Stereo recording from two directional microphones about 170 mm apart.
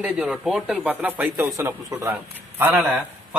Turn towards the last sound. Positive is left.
turn(degrees=-10)  # may be behind; listen again after turning